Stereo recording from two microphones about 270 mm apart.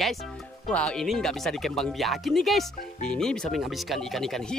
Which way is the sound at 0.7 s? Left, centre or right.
Centre.